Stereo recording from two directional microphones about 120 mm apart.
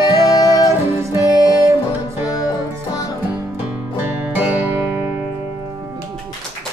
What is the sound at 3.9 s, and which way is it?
Music, 15° right (ahead or behind).